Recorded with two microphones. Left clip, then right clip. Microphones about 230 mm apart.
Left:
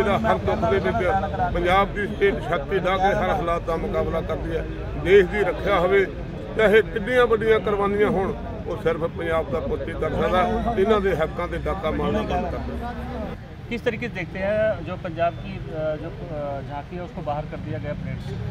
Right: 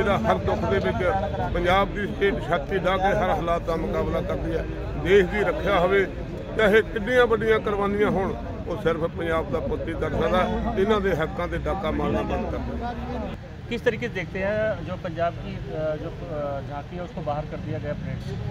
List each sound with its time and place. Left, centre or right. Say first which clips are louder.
0.0 s speech: left 2 dB; centre
13.7 s speech: right 1 dB; right